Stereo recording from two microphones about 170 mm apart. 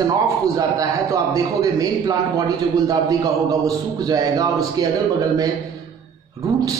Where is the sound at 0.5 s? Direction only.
20° right (ahead or behind).